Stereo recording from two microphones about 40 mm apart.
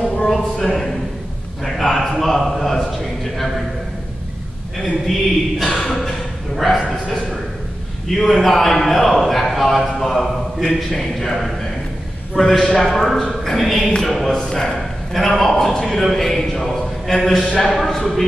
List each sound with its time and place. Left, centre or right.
0.2 s speech: centre
1.6 s a man's voice: centre
4.7 s a man's voice: centre